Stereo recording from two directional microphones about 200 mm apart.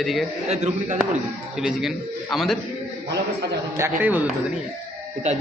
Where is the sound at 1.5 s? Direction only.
5° right (ahead or behind).